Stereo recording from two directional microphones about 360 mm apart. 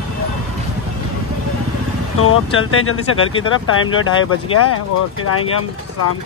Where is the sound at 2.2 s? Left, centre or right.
Left.